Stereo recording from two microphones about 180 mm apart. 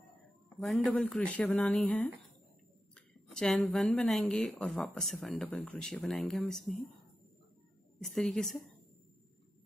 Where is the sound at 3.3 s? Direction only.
5° left (ahead or behind).